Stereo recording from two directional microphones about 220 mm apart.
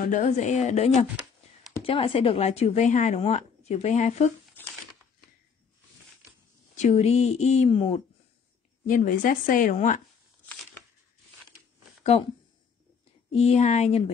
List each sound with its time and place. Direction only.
0.0 s a woman's voice: 35° left (ahead or behind)
6.8 s a woman's voice: 30° left (ahead or behind)
12.0 s speech: 30° left (ahead or behind)
13.3 s a woman's voice: 30° left (ahead or behind)